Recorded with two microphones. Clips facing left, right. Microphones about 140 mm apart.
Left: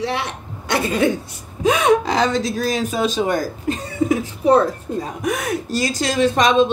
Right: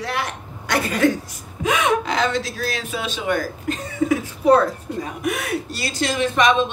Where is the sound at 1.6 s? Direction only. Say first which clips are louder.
Left 4 dB; 35° left (ahead or behind).